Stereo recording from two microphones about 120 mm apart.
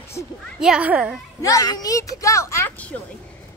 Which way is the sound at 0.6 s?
5° right (ahead or behind).